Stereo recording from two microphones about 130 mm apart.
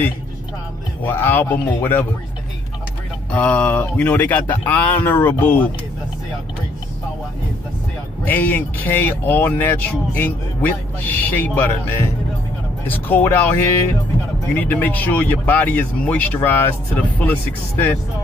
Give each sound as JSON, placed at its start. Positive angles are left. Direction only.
{"t": 1.0, "sound": "speech", "side_deg": 15}
{"t": 3.3, "sound": "speech", "side_deg": 10}
{"t": 8.3, "sound": "speech", "side_deg": 15}